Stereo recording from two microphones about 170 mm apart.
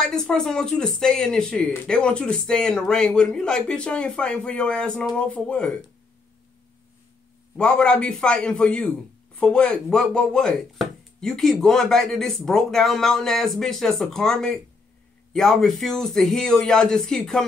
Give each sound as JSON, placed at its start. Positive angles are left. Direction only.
{"t": 0.0, "sound": "speech", "side_deg": 5}
{"t": 7.5, "sound": "speech", "side_deg": 5}